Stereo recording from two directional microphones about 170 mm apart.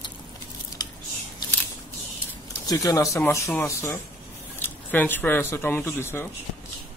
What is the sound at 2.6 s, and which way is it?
Speech, 20° left (ahead or behind).